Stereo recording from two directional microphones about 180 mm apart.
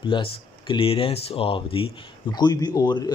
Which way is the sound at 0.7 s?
30° left (ahead or behind).